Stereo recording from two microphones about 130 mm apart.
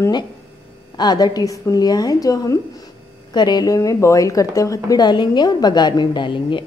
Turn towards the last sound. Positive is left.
turn(degrees=40)  # may be behind; listen again after turning